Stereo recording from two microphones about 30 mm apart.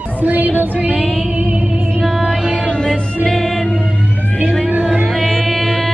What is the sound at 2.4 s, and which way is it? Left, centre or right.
Music, right.